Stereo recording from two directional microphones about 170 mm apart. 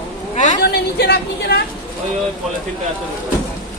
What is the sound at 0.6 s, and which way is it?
Speech, 75° left (ahead or behind).